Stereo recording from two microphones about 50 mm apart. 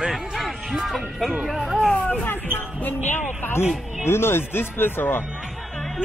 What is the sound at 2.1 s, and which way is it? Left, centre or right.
Speech, left.